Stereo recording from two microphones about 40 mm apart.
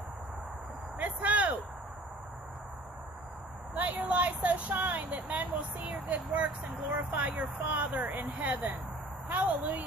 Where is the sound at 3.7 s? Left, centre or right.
Right.